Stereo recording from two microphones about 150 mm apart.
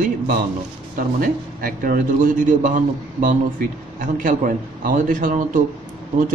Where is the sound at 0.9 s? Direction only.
75° right (ahead or behind).